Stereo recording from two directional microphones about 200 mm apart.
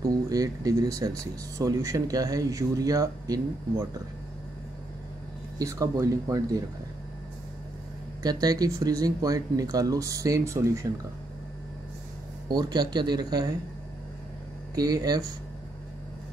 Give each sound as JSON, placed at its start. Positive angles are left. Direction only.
{"t": 0.3, "sound": "speech", "side_deg": -20}
{"t": 5.6, "sound": "speech", "side_deg": -15}
{"t": 8.2, "sound": "speech", "side_deg": -20}
{"t": 12.4, "sound": "speech", "side_deg": -20}
{"t": 14.8, "sound": "speech", "side_deg": -20}